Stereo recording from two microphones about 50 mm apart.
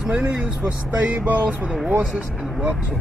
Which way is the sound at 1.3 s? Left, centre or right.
Right.